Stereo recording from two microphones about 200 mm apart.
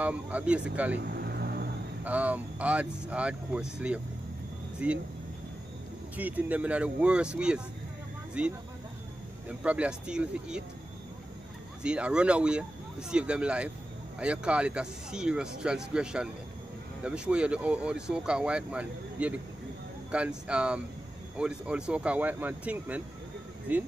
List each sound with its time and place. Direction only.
0.0 s speech: 5° right (ahead or behind)
0.9 s vehicle: 50° right (ahead or behind)
2.0 s speech: 5° right (ahead or behind)
6.1 s speech: 5° right (ahead or behind)
11.8 s speech: 5° right (ahead or behind)